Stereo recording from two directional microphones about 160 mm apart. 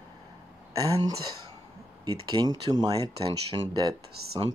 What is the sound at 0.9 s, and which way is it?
Speech, 25° right (ahead or behind).